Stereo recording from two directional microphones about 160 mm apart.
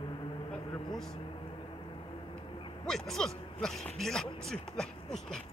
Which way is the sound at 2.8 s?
Centre (ahead or behind).